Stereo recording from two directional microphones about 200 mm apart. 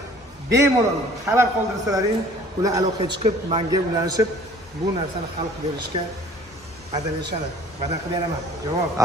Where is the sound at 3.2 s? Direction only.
30° right (ahead or behind).